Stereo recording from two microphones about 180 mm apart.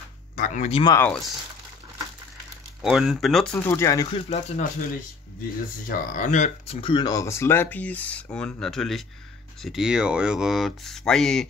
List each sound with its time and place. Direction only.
0.4 s speech: 35° left (ahead or behind)
0.8 s speech: 15° left (ahead or behind)
2.8 s speech: centre (ahead or behind)
3.5 s speech: 10° left (ahead or behind)
4.3 s speech: 35° left (ahead or behind)
5.9 s speech: 45° left (ahead or behind)
6.8 s speech: 25° left (ahead or behind); by 11.4 s 5° left (ahead or behind)